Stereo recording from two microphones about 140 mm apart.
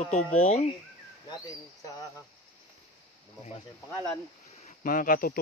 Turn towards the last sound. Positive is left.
turn(degrees=85)